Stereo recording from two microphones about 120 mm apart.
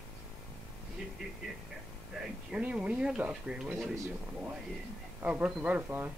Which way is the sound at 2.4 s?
10° right (ahead or behind).